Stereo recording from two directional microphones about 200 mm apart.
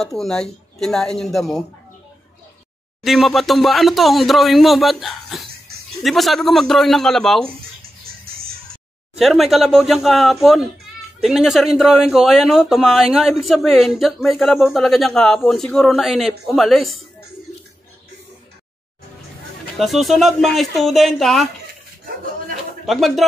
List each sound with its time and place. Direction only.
0.0 s speech: centre (ahead or behind)
3.0 s speech: centre (ahead or behind)
9.2 s speech: centre (ahead or behind)
19.8 s speech: centre (ahead or behind)
22.8 s speech: centre (ahead or behind)